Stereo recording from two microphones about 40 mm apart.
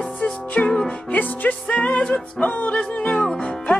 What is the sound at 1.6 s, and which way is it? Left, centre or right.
Music, left.